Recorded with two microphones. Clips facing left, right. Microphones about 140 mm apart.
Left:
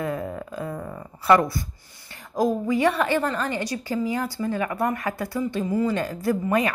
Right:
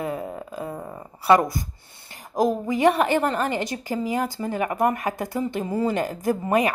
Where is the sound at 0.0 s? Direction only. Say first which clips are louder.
Left 1 dB; 15° right (ahead or behind).